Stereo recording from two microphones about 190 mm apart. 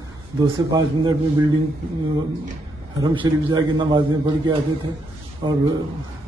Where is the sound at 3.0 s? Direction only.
25° right (ahead or behind).